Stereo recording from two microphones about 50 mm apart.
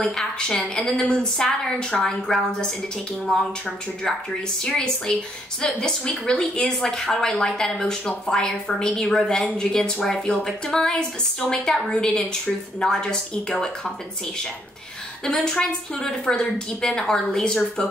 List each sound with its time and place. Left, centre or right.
0.0 s speech: centre
4.6 s speech: centre
15.2 s speech: centre